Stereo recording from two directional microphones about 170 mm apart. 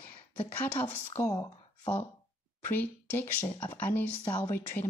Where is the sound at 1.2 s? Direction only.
25° left (ahead or behind).